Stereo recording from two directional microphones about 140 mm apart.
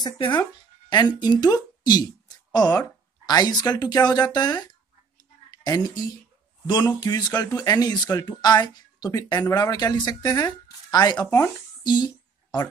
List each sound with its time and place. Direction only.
0.0 s a woman's voice: 30° left (ahead or behind)
11.2 s speech: 15° left (ahead or behind)
11.8 s a sound: 30° left (ahead or behind)